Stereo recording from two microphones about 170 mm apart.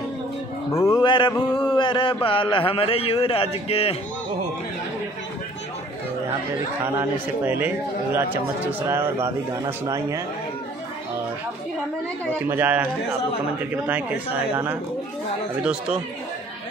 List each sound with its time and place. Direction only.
0.7 s speech: 15° left (ahead or behind)
1.0 s a sound: 30° left (ahead or behind)
1.6 s a man's voice: 30° left (ahead or behind)
6.8 s a man's voice: 15° right (ahead or behind)
12.4 s a man's voice: 10° right (ahead or behind)
13.8 s a man's voice: 10° right (ahead or behind)